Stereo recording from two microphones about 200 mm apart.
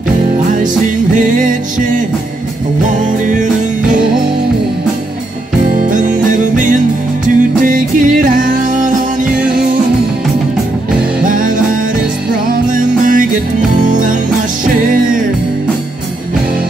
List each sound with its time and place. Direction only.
1.2 s music: 40° right (ahead or behind)
5.8 s music: 40° right (ahead or behind)
11.2 s music: 40° right (ahead or behind)
12.7 s music: 40° right (ahead or behind)